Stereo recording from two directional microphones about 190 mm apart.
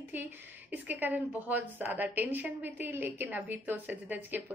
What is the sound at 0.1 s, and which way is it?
A woman's voice, 10° right (ahead or behind).